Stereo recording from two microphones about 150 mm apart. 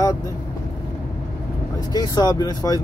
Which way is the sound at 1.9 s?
25° left (ahead or behind).